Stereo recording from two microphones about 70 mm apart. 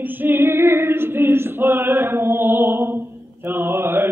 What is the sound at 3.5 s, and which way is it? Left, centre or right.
Mantra, right.